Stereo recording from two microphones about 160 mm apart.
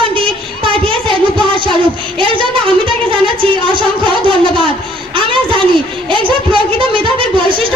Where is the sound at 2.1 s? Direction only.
30° right (ahead or behind).